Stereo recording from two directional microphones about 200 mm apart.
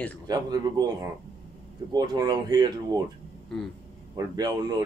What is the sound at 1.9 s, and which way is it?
Speech, 20° right (ahead or behind).